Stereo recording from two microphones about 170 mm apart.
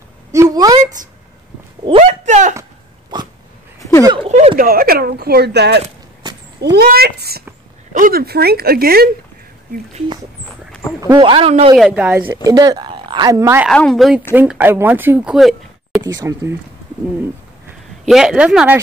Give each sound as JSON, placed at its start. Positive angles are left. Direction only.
{"t": 0.3, "sound": "a woman's voice", "side_deg": -20}
{"t": 1.9, "sound": "speech", "side_deg": -40}
{"t": 4.0, "sound": "speech", "side_deg": -25}
{"t": 4.3, "sound": "speech", "side_deg": -40}
{"t": 4.6, "sound": "speech", "side_deg": -60}
{"t": 6.2, "sound": "a sound", "side_deg": -25}
{"t": 6.6, "sound": "a child's voice", "side_deg": -75}
{"t": 7.9, "sound": "speech", "side_deg": -55}
{"t": 11.1, "sound": "speech", "side_deg": -30}
{"t": 11.7, "sound": "a woman's voice", "side_deg": -5}
{"t": 12.4, "sound": "speech", "side_deg": -25}
{"t": 13.7, "sound": "speech", "side_deg": 5}
{"t": 16.2, "sound": "speech", "side_deg": -20}
{"t": 18.0, "sound": "speech", "side_deg": -5}